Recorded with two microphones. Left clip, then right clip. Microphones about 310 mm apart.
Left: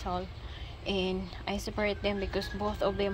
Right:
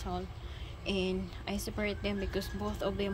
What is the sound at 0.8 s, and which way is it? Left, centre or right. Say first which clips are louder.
A woman's voice: left 2 dB; centre.